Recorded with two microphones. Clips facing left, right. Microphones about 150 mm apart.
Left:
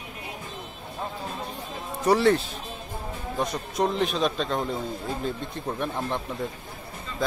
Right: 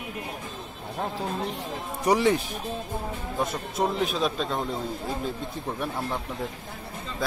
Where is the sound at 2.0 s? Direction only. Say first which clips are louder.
Left 2 dB; 15° right (ahead or behind).